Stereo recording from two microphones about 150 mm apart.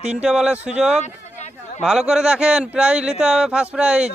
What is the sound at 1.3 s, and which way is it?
Speech, 50° left (ahead or behind).